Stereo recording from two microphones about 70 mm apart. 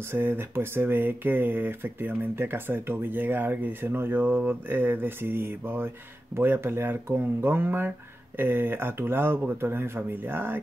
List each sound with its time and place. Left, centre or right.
0.1 s speech: right